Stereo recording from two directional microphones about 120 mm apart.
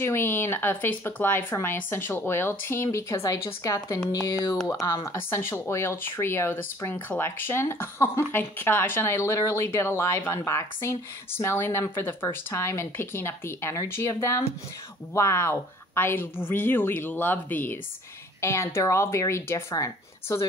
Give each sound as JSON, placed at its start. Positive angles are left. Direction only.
{"t": 0.0, "sound": "a woman's voice", "side_deg": 20}